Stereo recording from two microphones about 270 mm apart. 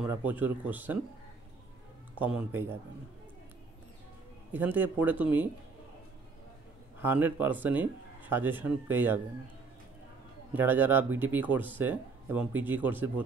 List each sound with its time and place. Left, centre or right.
0.0 s speech: centre
2.1 s speech: centre
4.5 s speech: centre
7.0 s speech: centre
10.5 s speech: centre